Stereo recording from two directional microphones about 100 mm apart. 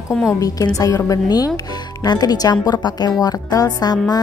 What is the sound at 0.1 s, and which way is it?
Speech, centre (ahead or behind).